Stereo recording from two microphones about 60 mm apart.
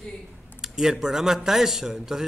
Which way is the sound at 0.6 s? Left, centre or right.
Centre.